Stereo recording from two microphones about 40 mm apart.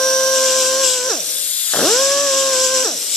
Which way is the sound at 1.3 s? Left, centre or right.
Left.